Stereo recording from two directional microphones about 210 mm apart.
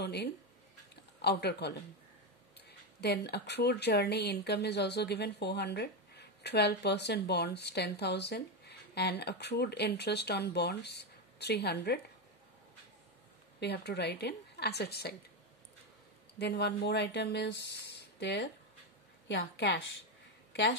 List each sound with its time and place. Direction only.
0.0 s a sound: 50° left (ahead or behind)
1.2 s speech: 50° left (ahead or behind)
3.0 s speech: 50° left (ahead or behind)
13.6 s speech: 50° left (ahead or behind)
16.3 s a woman's voice: 55° left (ahead or behind)